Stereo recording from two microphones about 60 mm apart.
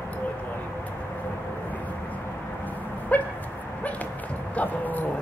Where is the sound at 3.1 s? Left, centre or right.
Left.